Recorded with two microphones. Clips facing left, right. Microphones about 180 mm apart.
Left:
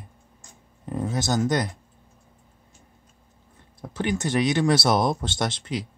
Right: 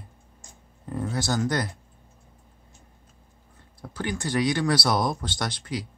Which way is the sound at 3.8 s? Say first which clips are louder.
Left 4 dB; 20° left (ahead or behind).